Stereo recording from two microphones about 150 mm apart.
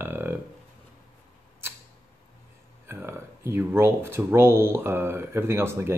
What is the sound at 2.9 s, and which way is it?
Speech, 15° right (ahead or behind).